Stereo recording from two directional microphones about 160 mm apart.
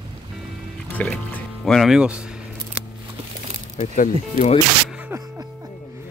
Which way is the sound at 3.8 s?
45° left (ahead or behind).